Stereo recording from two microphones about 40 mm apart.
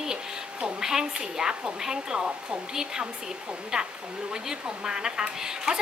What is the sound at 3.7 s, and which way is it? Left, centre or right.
A woman's voice, centre.